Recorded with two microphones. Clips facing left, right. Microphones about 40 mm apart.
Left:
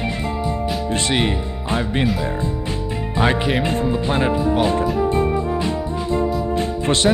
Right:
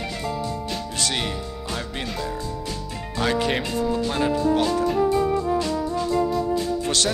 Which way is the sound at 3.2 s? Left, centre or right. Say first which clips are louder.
Left 4 dB; left.